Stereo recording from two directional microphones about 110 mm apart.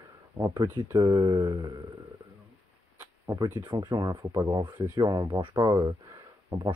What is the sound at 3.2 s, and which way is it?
Speech, 35° right (ahead or behind).